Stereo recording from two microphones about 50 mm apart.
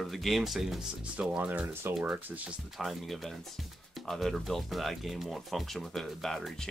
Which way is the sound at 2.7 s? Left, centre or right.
Centre.